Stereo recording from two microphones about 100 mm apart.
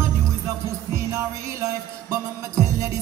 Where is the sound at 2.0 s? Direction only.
35° right (ahead or behind).